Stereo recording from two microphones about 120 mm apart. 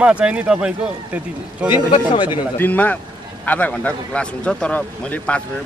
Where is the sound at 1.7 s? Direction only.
45° left (ahead or behind).